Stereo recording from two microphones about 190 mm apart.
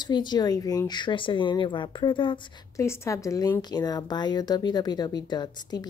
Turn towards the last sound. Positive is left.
turn(degrees=20)  # may be behind; listen again after turning